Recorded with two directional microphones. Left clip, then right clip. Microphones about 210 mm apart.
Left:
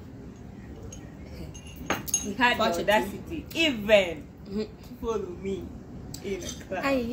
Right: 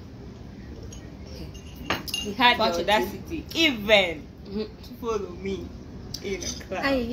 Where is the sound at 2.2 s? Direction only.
15° right (ahead or behind).